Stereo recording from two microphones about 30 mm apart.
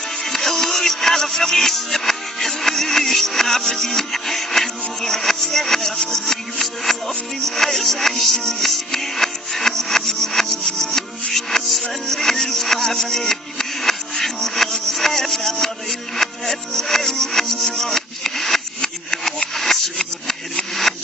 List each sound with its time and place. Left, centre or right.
0.2 s music: centre